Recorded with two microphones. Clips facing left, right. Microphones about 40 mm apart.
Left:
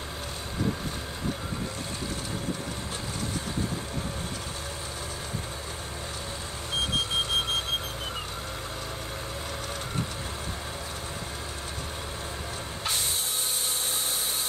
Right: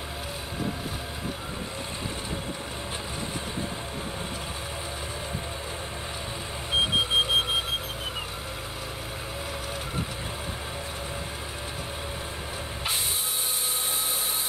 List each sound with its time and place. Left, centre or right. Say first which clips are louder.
6.7 s alarm clock: right 4 dB; centre